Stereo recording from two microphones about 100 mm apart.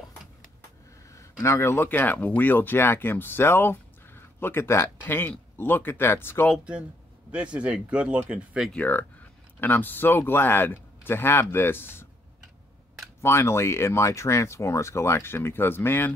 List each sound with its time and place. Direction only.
1.4 s speech: 25° left (ahead or behind)
7.5 s speech: 10° right (ahead or behind)
8.7 s speech: 20° left (ahead or behind)
13.2 s speech: 25° left (ahead or behind)